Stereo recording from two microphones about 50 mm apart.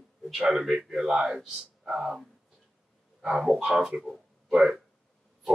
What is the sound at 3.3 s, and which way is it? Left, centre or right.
Speech, centre.